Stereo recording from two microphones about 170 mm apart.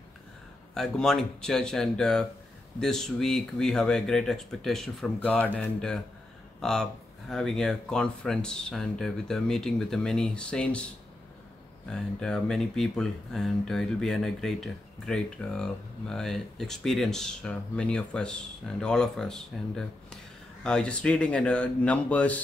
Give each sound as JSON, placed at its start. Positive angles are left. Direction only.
{"t": 0.7, "sound": "speech", "side_deg": 0}
{"t": 11.9, "sound": "speech", "side_deg": 5}